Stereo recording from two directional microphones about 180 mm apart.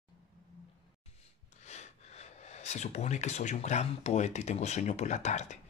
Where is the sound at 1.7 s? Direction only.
40° left (ahead or behind).